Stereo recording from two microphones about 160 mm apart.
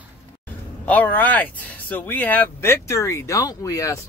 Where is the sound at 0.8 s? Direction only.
10° left (ahead or behind).